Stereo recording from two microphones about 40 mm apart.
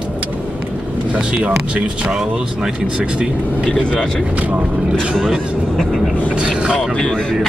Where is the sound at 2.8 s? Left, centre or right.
Right.